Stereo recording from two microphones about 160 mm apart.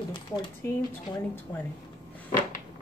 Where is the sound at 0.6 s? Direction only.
15° left (ahead or behind).